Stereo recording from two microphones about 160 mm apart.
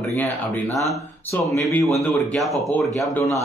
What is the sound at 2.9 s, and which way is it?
Speech, 20° left (ahead or behind).